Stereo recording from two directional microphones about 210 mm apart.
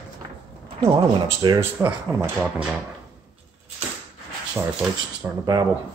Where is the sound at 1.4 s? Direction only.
15° right (ahead or behind).